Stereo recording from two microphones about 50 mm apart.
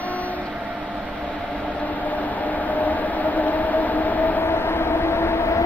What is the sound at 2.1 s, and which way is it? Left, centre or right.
Train, left.